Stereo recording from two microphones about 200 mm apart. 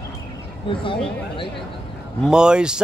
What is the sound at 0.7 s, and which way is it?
Speech, 25° left (ahead or behind).